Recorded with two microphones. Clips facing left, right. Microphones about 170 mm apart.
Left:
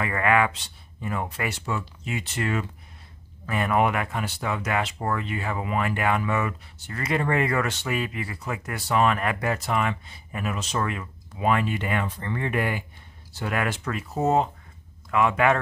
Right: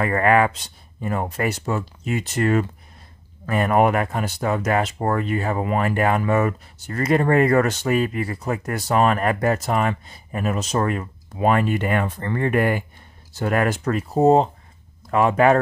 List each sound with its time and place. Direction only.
0.0 s speech: 40° right (ahead or behind)